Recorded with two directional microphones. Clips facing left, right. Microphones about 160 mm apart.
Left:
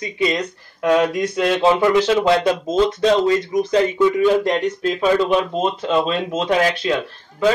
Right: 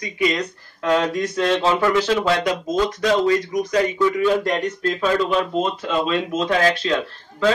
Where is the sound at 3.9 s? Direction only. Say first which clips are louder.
Left 3 dB; 15° left (ahead or behind).